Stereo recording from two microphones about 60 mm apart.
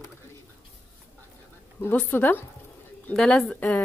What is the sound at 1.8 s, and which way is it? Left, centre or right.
Speech, left.